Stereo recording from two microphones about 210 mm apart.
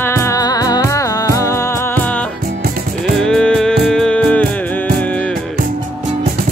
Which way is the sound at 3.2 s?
5° left (ahead or behind).